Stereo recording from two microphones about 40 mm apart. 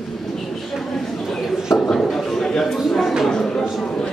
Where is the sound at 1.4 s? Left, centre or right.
Centre.